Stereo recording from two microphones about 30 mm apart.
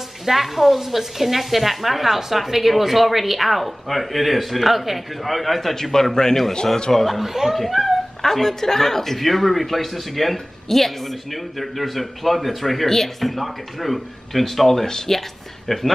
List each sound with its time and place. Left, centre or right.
0.2 s a man's voice: centre
7.2 s speech: centre
8.2 s a man's voice: centre